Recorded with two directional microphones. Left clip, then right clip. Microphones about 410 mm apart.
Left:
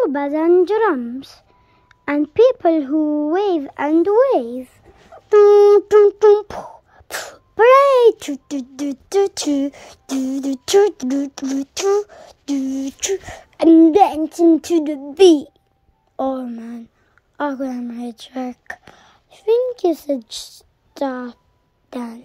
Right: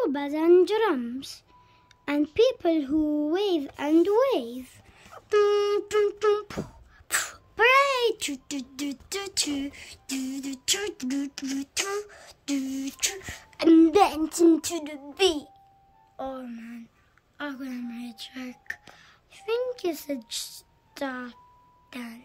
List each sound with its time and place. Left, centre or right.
0.0 s speech: centre
15.1 s a woman's voice: centre